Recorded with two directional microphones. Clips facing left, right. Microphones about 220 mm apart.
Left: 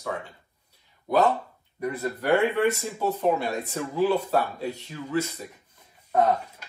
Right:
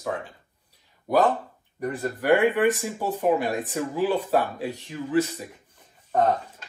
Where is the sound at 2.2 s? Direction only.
15° right (ahead or behind).